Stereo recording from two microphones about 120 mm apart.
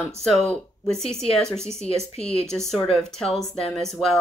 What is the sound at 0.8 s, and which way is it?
Speech, 5° left (ahead or behind).